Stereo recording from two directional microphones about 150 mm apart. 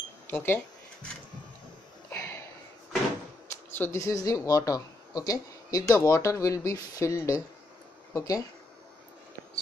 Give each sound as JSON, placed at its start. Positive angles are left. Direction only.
{"t": 0.3, "sound": "speech", "side_deg": 15}
{"t": 2.0, "sound": "a sound", "side_deg": 20}
{"t": 3.7, "sound": "speech", "side_deg": 15}